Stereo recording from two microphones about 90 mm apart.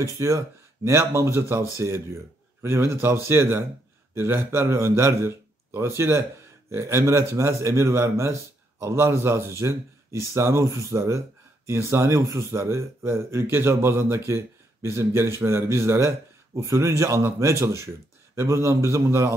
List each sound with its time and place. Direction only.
0.2 s a man's voice: 35° right (ahead or behind)